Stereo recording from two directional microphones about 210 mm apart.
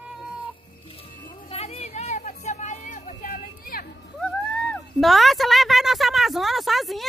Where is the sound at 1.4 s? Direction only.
30° left (ahead or behind); by 3.9 s 45° left (ahead or behind).